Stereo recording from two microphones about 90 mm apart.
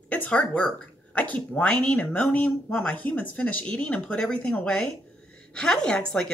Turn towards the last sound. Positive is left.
turn(degrees=10)  # may be behind; listen again after turning